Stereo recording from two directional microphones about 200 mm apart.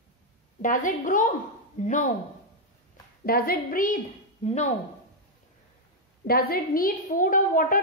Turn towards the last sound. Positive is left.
turn(degrees=45)  # may be behind; listen again after turning